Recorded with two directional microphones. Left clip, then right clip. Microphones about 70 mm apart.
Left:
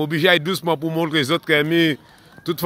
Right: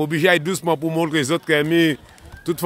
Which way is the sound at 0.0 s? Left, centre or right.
Right.